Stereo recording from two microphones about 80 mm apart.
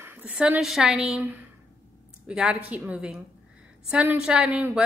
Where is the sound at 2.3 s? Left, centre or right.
Centre.